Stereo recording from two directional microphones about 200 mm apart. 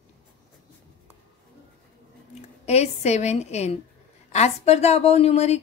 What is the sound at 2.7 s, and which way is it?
A woman's voice, 35° left (ahead or behind).